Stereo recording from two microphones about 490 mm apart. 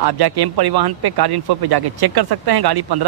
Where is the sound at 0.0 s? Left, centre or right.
Right.